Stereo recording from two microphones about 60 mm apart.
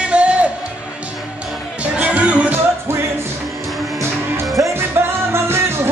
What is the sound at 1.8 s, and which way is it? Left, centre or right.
Music, right.